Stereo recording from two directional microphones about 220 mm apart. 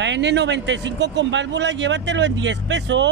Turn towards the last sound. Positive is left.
turn(degrees=-55)  # may be behind; listen again after turning